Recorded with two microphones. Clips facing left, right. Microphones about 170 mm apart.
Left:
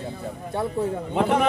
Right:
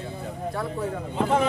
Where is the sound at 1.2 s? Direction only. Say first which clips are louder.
Left 3 dB; 70° left (ahead or behind).